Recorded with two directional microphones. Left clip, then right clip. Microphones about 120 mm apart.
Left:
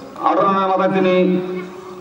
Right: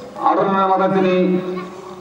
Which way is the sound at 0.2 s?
5° left (ahead or behind).